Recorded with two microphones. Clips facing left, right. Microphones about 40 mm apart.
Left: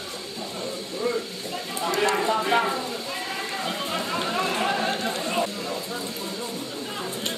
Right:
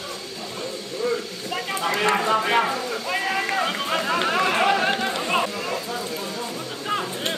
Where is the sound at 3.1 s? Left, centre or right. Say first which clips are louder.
Right 7 dB; right.